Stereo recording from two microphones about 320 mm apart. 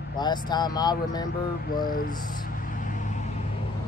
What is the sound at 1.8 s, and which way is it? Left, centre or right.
Music, left.